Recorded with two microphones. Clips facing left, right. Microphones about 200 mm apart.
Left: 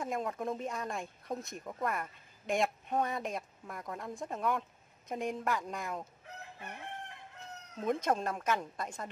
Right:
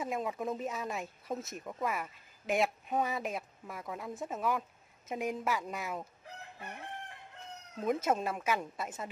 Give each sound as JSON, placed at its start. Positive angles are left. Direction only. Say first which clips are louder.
{"t": 0.0, "sound": "speech", "louder": "even", "side_deg": -5}
{"t": 7.8, "sound": "speech", "louder": "right 1 dB", "side_deg": -5}